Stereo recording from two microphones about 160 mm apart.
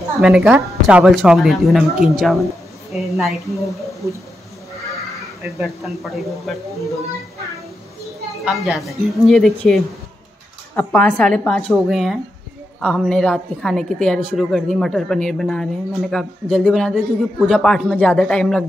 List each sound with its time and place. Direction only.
0.2 s a woman's voice: 5° right (ahead or behind)
5.6 s a woman's voice: centre (ahead or behind)
8.5 s a woman's voice: centre (ahead or behind)